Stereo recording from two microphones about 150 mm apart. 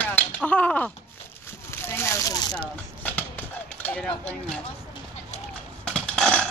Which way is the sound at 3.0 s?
10° left (ahead or behind).